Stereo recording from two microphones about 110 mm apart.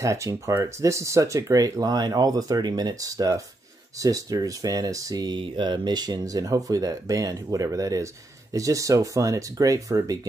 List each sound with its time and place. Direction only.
0.0 s speech: 30° right (ahead or behind)